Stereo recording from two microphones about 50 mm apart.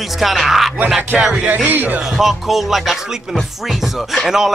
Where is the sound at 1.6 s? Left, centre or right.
Right.